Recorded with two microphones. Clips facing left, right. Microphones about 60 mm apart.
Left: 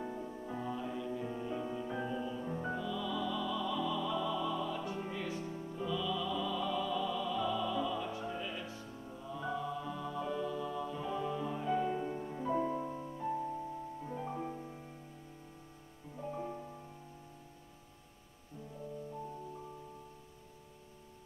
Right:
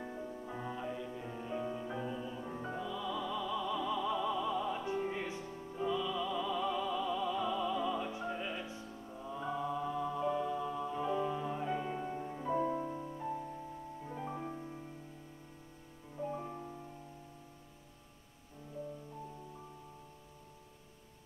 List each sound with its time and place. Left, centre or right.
0.5 s music: centre
2.8 s music: centre
5.4 s music: centre
5.9 s music: right
11.8 s music: centre
14.0 s music: centre
16.2 s music: centre